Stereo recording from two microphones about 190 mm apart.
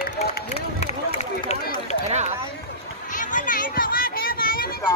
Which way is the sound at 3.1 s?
45° left (ahead or behind).